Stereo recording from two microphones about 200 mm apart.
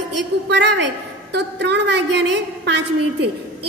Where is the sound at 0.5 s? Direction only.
60° right (ahead or behind).